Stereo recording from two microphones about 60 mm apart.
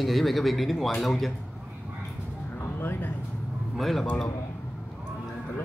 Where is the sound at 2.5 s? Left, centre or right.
Left.